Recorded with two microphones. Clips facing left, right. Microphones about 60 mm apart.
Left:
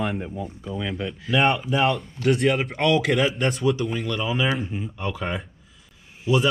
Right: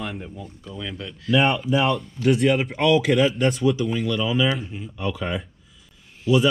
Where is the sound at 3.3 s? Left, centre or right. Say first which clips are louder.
Right 3 dB; left.